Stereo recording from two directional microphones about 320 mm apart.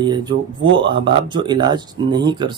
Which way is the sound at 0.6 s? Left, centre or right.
Right.